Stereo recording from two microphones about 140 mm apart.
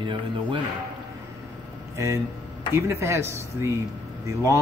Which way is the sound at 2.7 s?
20° right (ahead or behind).